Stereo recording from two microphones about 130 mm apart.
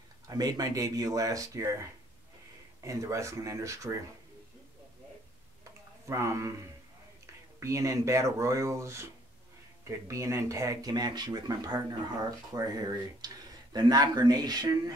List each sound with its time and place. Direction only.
0.3 s speech: 30° right (ahead or behind)
5.6 s a sound: 25° right (ahead or behind)
7.6 s speech: 25° right (ahead or behind)